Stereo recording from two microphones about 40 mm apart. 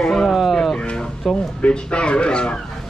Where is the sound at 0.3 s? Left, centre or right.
Centre.